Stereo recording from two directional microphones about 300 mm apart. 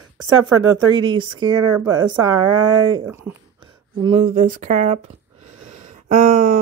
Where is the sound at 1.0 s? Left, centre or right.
Centre.